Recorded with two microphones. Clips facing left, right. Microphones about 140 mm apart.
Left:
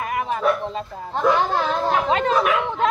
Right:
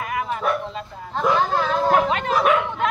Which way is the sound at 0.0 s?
30° left (ahead or behind).